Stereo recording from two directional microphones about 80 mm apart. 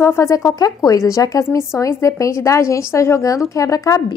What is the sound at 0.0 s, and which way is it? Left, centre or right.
Speech, left.